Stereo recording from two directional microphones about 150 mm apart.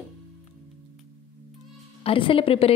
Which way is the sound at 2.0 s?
35° left (ahead or behind).